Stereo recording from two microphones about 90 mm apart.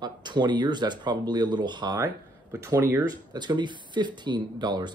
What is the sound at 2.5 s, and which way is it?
Speech, 40° right (ahead or behind).